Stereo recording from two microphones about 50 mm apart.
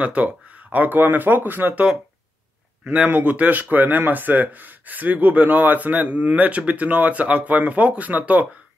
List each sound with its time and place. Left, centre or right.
0.0 s speech: right
3.1 s speech: right